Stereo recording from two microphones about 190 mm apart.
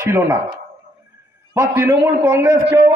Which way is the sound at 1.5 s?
15° right (ahead or behind).